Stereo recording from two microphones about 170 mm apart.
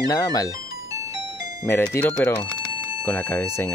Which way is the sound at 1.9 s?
10° left (ahead or behind).